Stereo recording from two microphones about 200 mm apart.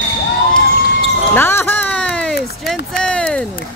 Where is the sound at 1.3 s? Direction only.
10° left (ahead or behind).